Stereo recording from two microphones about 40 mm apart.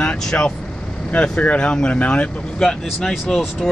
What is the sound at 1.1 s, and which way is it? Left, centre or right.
Speech, left.